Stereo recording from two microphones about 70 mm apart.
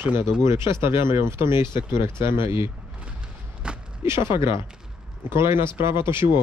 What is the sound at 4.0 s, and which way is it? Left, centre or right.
Speech, right.